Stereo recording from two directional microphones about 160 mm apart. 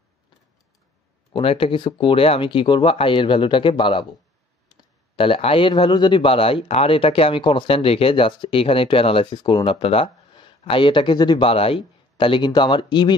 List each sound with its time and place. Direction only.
1.3 s speech: 35° left (ahead or behind)